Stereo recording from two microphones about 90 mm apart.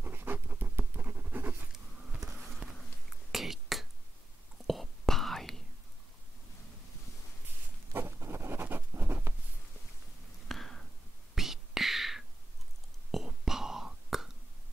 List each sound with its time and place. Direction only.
0.0 s writing: 25° right (ahead or behind)
2.2 s insect: 40° right (ahead or behind)
2.6 s a sound: 10° right (ahead or behind)
3.1 s whispering: 5° right (ahead or behind)
7.9 s writing: 30° right (ahead or behind)
10.5 s a sound: 5° left (ahead or behind)
11.3 s whispering: 5° right (ahead or behind)